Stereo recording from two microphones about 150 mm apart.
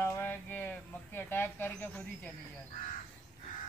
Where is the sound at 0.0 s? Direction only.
15° left (ahead or behind).